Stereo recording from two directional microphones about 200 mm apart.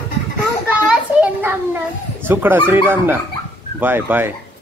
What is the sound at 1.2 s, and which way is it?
Children playing, 10° right (ahead or behind).